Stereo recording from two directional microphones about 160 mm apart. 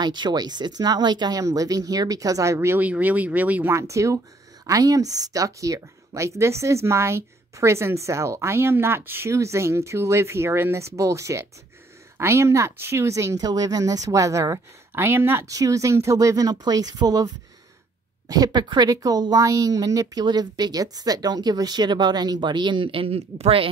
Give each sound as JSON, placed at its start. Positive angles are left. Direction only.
{"t": 0.0, "sound": "a woman's voice", "side_deg": -25}
{"t": 18.3, "sound": "a woman's voice", "side_deg": -25}